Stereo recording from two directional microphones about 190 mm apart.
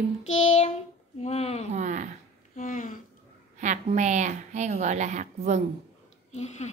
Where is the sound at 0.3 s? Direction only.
35° left (ahead or behind).